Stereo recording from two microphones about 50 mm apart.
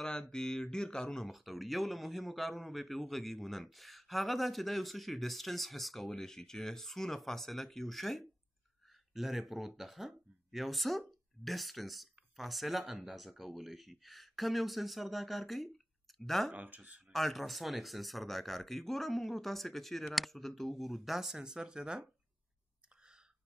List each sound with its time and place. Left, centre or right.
0.0 s speech: centre
1.2 s a man's voice: centre
16.5 s speech: right
17.1 s a man's voice: centre